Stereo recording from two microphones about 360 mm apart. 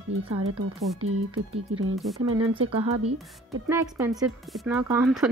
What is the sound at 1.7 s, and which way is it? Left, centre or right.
Speech, right.